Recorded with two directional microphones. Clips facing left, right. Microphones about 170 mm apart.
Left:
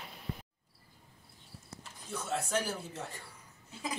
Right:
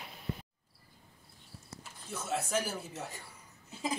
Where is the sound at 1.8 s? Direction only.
5° right (ahead or behind).